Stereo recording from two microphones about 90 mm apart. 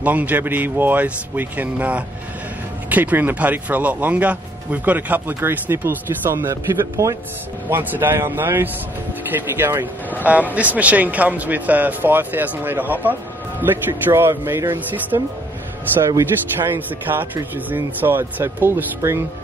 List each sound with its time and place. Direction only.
0.0 s speech: 20° right (ahead or behind)
6.5 s speech: 35° right (ahead or behind)
7.7 s speech: 25° right (ahead or behind)
16.2 s speech: 25° right (ahead or behind)